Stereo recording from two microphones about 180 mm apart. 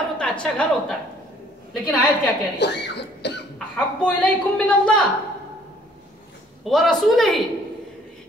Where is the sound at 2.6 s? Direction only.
70° left (ahead or behind).